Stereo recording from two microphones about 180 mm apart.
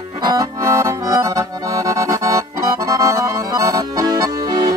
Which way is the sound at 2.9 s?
20° right (ahead or behind).